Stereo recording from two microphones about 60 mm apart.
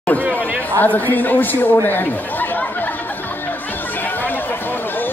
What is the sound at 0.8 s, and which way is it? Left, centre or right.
Speech, left.